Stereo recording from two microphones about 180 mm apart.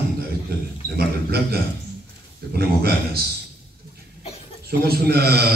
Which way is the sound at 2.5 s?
60° right (ahead or behind).